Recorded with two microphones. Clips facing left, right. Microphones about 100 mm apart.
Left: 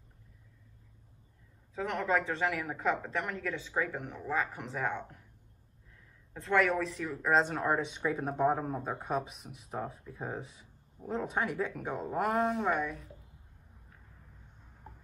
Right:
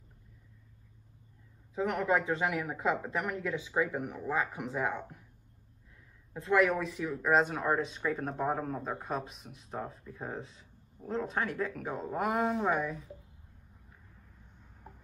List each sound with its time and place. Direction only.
1.8 s speech: 5° right (ahead or behind)
6.3 s speech: 10° right (ahead or behind)
14.8 s a sound: 5° right (ahead or behind)